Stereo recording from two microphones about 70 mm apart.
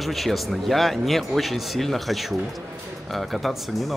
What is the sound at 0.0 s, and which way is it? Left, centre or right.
A man's voice, centre.